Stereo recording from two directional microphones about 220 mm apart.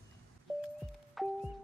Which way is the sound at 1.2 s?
Centre (ahead or behind).